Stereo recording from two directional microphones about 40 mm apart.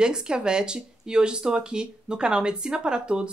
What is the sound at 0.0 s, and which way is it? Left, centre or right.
Speech, right.